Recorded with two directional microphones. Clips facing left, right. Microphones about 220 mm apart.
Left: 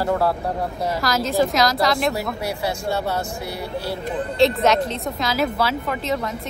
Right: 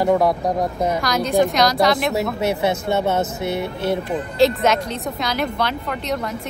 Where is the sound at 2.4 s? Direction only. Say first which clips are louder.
Right 6 dB; 20° right (ahead or behind).